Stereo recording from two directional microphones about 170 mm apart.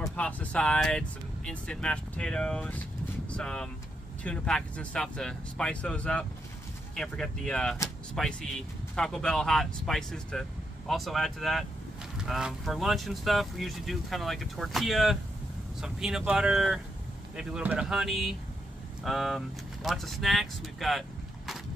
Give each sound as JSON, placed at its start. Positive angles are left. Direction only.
{"t": 0.0, "sound": "speech", "side_deg": 5}